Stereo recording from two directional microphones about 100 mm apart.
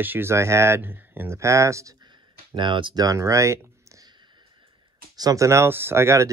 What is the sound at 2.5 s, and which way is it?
Speech, 55° right (ahead or behind).